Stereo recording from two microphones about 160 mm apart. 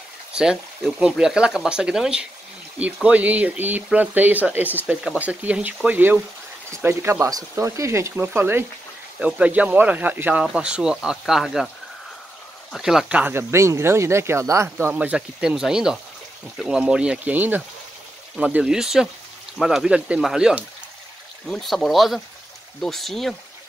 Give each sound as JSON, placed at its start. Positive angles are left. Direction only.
{"t": 0.3, "sound": "speech", "side_deg": -5}
{"t": 12.7, "sound": "speech", "side_deg": -5}